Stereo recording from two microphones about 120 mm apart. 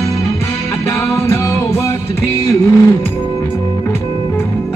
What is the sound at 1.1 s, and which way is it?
Music, 25° left (ahead or behind).